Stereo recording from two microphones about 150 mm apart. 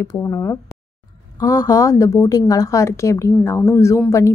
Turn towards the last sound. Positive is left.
turn(degrees=15)  # may be behind; listen again after turning